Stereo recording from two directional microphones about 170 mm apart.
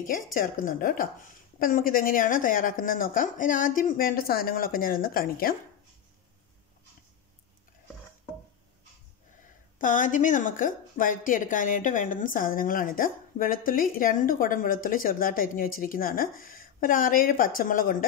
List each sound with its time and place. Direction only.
0.0 s a woman's voice: 55° left (ahead or behind)
9.8 s a woman's voice: 50° left (ahead or behind)